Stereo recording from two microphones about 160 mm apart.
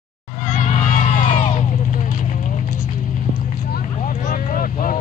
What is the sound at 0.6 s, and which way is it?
Crowd, 45° left (ahead or behind).